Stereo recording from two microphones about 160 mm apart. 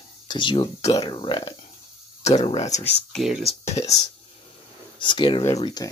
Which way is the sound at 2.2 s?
45° left (ahead or behind).